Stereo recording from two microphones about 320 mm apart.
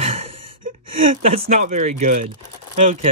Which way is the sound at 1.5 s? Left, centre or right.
Centre.